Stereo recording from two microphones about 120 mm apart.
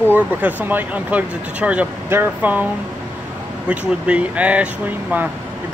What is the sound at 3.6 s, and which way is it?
Speech, 10° right (ahead or behind).